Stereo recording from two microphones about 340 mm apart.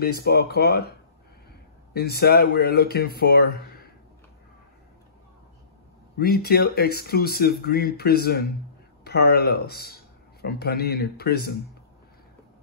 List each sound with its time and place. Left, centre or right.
0.0 s speech: left
2.0 s speech: left
6.1 s speech: left